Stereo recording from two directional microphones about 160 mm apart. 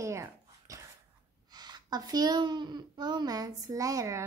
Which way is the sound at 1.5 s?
25° right (ahead or behind).